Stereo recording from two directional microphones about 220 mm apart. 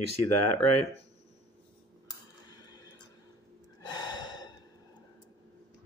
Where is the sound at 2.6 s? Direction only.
20° left (ahead or behind).